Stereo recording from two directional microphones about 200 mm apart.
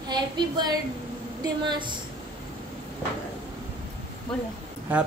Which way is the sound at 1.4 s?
20° right (ahead or behind).